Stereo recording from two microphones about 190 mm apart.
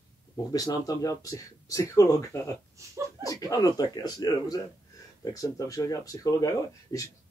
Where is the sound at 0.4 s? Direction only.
20° left (ahead or behind).